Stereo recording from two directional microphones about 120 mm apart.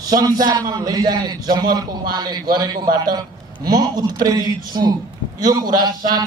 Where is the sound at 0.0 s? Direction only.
30° right (ahead or behind).